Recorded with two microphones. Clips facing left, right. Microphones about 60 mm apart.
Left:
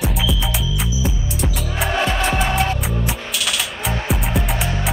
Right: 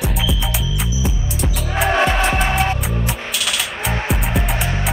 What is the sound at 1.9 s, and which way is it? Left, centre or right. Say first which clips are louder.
Music: right 3 dB; right.